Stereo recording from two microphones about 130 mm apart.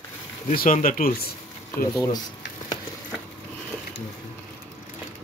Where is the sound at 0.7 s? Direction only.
90° left.